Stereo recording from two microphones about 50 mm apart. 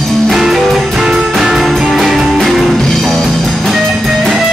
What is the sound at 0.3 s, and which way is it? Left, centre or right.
Music, centre.